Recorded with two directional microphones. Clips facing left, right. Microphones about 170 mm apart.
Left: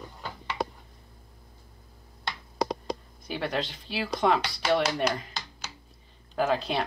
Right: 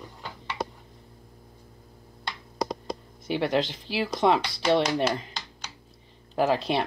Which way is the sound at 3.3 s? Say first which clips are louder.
Right 6 dB; 25° right (ahead or behind).